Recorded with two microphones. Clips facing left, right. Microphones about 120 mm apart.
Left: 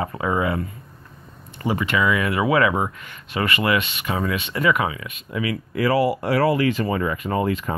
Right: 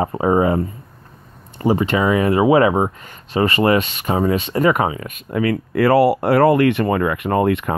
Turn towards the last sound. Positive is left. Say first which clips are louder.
# right 5 dB
turn(degrees=-60)  # may be behind; listen again after turning